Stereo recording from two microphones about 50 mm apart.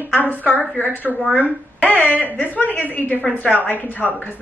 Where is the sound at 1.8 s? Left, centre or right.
Left.